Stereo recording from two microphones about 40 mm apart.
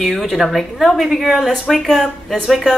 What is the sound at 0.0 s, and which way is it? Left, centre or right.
A woman's voice, centre.